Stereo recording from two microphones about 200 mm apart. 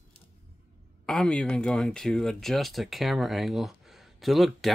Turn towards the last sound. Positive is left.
turn(degrees=0)  # may be behind; listen again after turning